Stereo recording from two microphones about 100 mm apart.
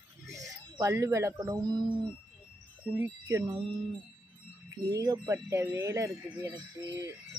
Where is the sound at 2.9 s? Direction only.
30° right (ahead or behind).